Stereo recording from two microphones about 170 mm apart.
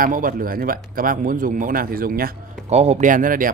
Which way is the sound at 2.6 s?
40° right (ahead or behind).